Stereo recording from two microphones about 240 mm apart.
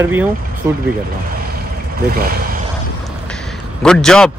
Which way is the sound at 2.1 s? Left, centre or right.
Right.